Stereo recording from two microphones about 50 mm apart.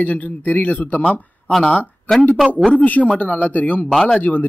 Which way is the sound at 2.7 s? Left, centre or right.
Left.